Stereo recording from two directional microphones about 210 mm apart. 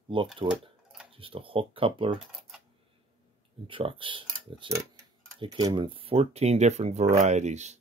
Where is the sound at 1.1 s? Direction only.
25° right (ahead or behind).